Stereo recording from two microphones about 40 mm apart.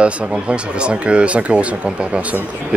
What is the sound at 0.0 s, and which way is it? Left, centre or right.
Speech, right.